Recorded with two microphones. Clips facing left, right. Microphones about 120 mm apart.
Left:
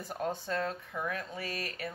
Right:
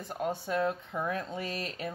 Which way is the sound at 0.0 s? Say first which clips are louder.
Right 2 dB; centre (ahead or behind).